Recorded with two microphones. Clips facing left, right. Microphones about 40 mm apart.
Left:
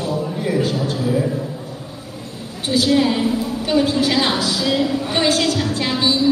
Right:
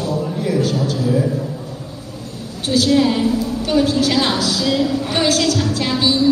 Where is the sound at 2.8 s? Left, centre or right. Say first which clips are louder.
Right 1 dB; left.